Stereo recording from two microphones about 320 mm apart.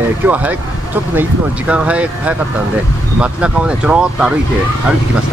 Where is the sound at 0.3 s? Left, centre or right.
Centre.